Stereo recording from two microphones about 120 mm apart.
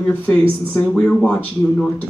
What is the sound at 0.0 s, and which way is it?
Speech, 10° left (ahead or behind).